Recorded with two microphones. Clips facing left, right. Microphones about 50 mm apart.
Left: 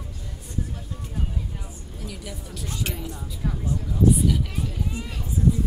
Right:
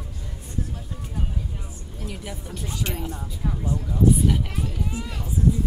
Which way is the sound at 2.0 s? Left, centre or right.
Centre.